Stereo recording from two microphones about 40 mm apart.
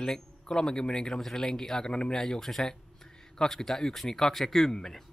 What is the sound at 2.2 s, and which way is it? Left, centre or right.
Speech, centre.